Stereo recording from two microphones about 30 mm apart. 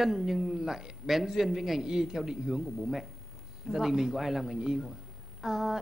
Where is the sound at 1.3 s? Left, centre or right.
Centre.